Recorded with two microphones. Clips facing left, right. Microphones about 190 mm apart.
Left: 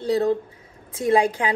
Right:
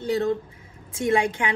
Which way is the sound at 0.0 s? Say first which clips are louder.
Left 3 dB; 35° left (ahead or behind).